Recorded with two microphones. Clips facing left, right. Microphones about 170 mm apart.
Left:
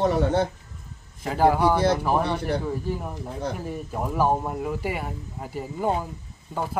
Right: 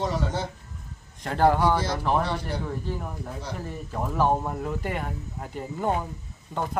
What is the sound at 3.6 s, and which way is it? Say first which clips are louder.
Speech: left 2 dB; 10° left (ahead or behind).